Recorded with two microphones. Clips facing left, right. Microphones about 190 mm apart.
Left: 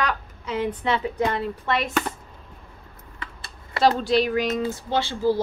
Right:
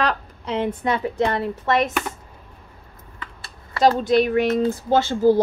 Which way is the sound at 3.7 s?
45° right (ahead or behind).